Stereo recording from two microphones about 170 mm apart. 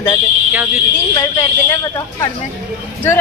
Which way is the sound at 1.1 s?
20° left (ahead or behind).